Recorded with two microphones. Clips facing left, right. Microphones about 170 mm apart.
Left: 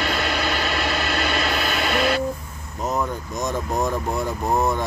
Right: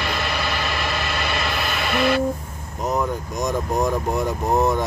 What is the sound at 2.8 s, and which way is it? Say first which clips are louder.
Speech: right 2 dB; 15° right (ahead or behind).